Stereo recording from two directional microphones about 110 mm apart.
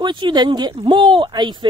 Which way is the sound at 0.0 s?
45° right (ahead or behind).